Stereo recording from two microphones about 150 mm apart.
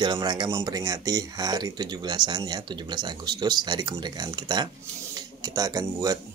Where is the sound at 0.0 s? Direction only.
30° right (ahead or behind).